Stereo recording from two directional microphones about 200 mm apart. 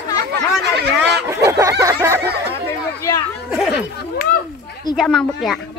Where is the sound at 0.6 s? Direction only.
55° right (ahead or behind).